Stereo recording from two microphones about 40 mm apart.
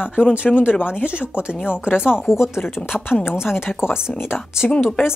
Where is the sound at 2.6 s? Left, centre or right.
Left.